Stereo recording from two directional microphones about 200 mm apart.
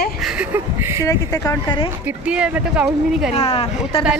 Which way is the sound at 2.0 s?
5° right (ahead or behind).